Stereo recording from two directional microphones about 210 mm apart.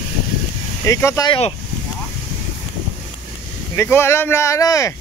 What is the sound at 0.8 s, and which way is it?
Speech, 15° left (ahead or behind).